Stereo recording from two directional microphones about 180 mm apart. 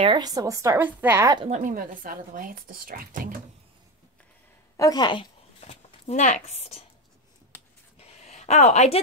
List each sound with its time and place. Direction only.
0.0 s a woman's voice: 25° right (ahead or behind)
1.4 s speech: 40° right (ahead or behind)
4.7 s speech: 20° left (ahead or behind); by 6.8 s 35° left (ahead or behind)
8.0 s a sound: 35° left (ahead or behind)